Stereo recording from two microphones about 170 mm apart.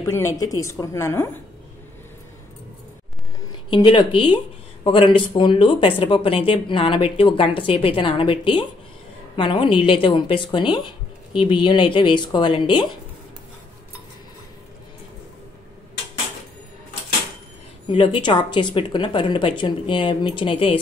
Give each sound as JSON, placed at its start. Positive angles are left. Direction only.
{"t": 0.0, "sound": "a woman's voice", "side_deg": 15}
{"t": 3.7, "sound": "speech", "side_deg": 30}
{"t": 17.8, "sound": "speech", "side_deg": 30}